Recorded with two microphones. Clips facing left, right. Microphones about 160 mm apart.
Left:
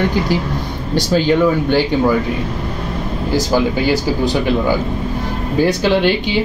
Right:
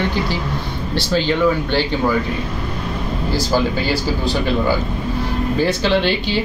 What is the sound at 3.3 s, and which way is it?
Speech, 15° left (ahead or behind).